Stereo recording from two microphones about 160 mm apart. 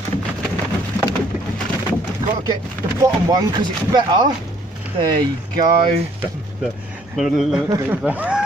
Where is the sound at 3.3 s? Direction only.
25° right (ahead or behind).